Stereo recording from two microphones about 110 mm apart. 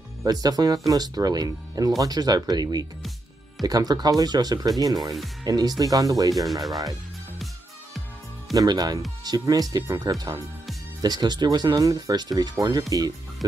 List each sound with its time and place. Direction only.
0.2 s speech: 35° right (ahead or behind)
8.5 s speech: 40° right (ahead or behind)